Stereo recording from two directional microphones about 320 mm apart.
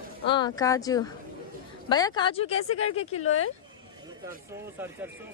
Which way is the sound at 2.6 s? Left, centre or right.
Left.